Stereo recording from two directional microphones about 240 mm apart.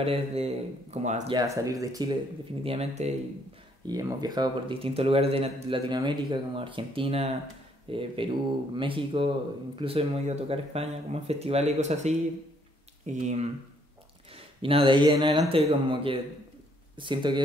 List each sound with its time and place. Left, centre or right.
0.0 s speech: right
1.3 s speech: centre
3.8 s speech: centre